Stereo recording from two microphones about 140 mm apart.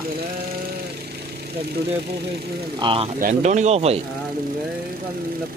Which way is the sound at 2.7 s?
40° right (ahead or behind).